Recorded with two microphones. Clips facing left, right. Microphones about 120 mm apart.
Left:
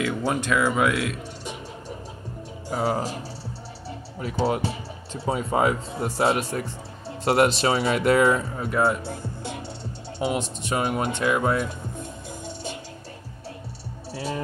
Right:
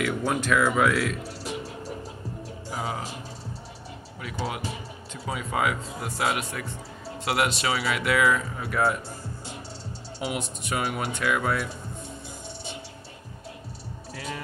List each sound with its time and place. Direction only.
0.2 s speech: 20° left (ahead or behind)
2.8 s speech: 40° left (ahead or behind)
4.2 s speech: 40° left (ahead or behind)
9.0 s music: 60° left (ahead or behind)
10.2 s speech: 30° left (ahead or behind)
11.1 s speech: 25° left (ahead or behind)
14.1 s speech: 30° left (ahead or behind)